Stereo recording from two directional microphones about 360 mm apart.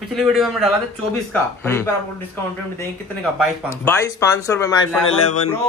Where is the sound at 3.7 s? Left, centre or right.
Centre.